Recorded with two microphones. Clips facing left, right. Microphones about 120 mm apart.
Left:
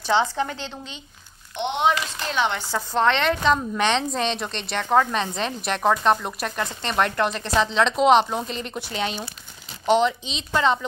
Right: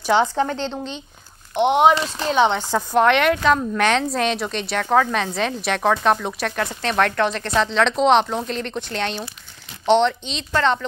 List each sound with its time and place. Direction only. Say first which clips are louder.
0.0 s a woman's voice: right 3 dB; 15° right (ahead or behind)
0.6 s speech: right 8 dB; 65° right (ahead or behind)
1.5 s speech: right 7 dB; 45° right (ahead or behind)
2.0 s speech: right 7 dB; 35° right (ahead or behind)
2.7 s speech: right 4 dB; 15° right (ahead or behind); by 10.9 s 5° left (ahead or behind)